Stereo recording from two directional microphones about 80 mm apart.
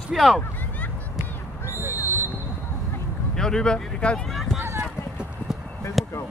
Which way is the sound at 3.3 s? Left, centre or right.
Centre.